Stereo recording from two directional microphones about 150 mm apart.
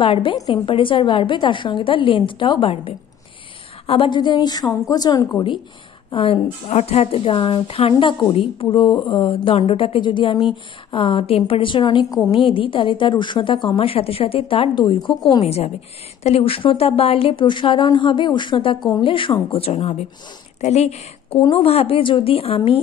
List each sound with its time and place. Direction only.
0.0 s a woman's voice: 35° left (ahead or behind)
6.1 s speech: 40° left (ahead or behind)
15.4 s speech: 45° left (ahead or behind)